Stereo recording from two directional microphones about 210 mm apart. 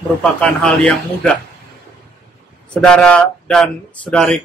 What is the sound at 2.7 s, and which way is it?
Speech, 5° left (ahead or behind).